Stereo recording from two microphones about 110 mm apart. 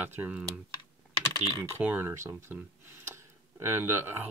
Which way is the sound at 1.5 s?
25° right (ahead or behind).